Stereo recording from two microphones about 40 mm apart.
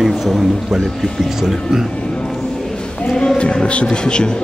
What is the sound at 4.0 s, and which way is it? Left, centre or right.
Speech, left.